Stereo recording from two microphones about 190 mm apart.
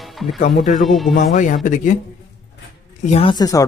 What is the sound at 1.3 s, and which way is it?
Speech, 40° left (ahead or behind).